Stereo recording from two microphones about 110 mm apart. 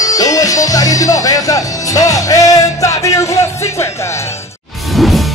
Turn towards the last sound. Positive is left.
turn(degrees=0)  # may be behind; listen again after turning